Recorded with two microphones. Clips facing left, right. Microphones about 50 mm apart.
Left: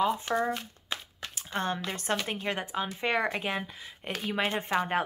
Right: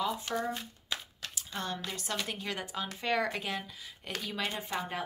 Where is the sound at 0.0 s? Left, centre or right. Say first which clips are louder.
Left 6 dB; left.